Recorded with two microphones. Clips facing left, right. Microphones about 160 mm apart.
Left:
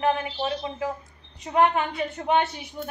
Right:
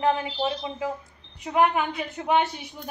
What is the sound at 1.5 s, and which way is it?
Speech, 5° right (ahead or behind).